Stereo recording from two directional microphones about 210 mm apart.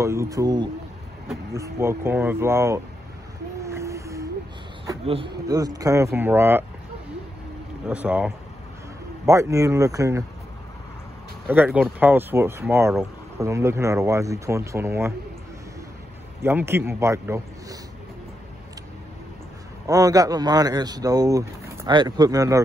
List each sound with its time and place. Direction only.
0.0 s speech: 15° right (ahead or behind)
3.6 s a sound: 15° right (ahead or behind)
5.0 s speech: 25° right (ahead or behind)
7.8 s speech: 5° right (ahead or behind)
11.4 s speech: 10° right (ahead or behind)
16.4 s speech: 10° right (ahead or behind)
19.9 s speech: 15° right (ahead or behind)